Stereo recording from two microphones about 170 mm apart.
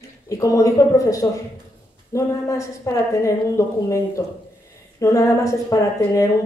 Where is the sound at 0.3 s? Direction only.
20° left (ahead or behind).